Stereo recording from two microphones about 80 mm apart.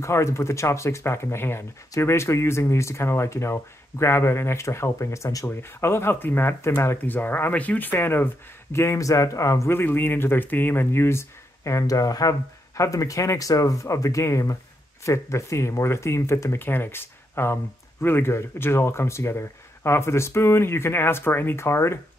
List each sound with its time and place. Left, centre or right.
0.0 s speech: left
7.0 s speech: left
9.7 s speech: left